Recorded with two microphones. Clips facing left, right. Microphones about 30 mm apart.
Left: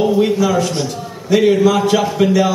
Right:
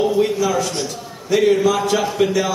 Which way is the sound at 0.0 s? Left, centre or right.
Centre.